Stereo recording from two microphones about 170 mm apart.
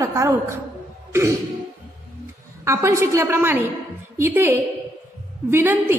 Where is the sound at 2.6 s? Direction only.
15° right (ahead or behind).